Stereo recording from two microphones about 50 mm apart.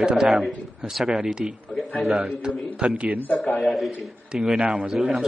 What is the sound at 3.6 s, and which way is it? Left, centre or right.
Speech, centre.